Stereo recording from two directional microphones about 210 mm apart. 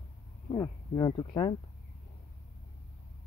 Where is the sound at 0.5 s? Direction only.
20° left (ahead or behind).